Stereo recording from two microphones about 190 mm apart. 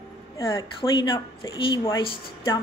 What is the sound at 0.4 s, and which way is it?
A woman's voice, 20° left (ahead or behind).